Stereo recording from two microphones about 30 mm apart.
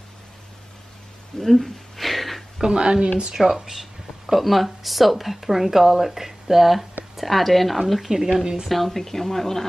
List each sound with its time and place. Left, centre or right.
1.4 s a sound: centre
2.6 s speech: right
3.3 s speech: centre
7.2 s speech: centre
8.1 s speech: centre
8.6 s speech: centre